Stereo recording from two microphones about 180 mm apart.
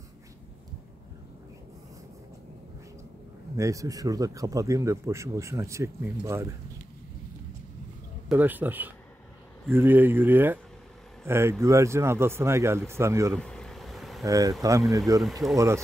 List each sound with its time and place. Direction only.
3.5 s speech: 15° right (ahead or behind)
8.3 s speech: 10° right (ahead or behind)
13.4 s insect: 5° left (ahead or behind)
14.2 s speech: 20° right (ahead or behind)